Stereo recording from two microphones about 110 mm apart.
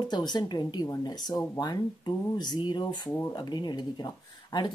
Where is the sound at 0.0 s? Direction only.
40° left (ahead or behind).